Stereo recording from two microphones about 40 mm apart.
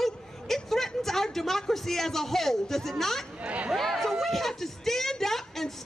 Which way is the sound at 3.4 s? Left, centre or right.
Right.